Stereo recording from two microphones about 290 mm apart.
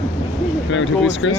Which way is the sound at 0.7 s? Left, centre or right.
Left.